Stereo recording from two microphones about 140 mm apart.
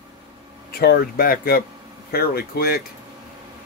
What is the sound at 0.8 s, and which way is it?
Speech, 90° left.